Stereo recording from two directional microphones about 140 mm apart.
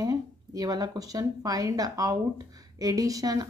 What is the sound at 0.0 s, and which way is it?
A woman's voice, 25° right (ahead or behind).